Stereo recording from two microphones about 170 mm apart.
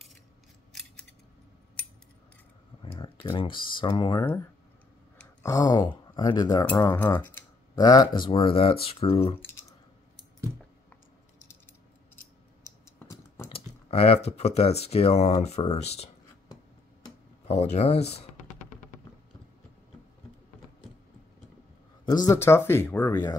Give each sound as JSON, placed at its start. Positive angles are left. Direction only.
{"t": 3.0, "sound": "speech", "side_deg": 30}
{"t": 5.4, "sound": "speech", "side_deg": 20}
{"t": 6.6, "sound": "speech", "side_deg": 15}
{"t": 9.4, "sound": "typing", "side_deg": 15}
{"t": 12.6, "sound": "typing", "side_deg": 20}
{"t": 13.5, "sound": "speech", "side_deg": 35}
{"t": 17.5, "sound": "speech", "side_deg": 40}
{"t": 22.0, "sound": "speech", "side_deg": 20}